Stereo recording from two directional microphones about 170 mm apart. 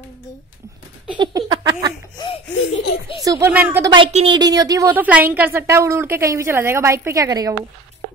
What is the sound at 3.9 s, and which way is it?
Speech, 35° right (ahead or behind).